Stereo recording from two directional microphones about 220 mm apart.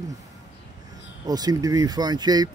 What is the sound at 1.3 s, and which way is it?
Speech, 15° right (ahead or behind).